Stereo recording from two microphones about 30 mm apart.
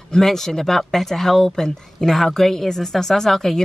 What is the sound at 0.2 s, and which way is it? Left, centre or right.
Speech, centre.